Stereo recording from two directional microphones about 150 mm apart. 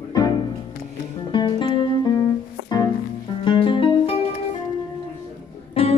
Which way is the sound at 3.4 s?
35° left (ahead or behind).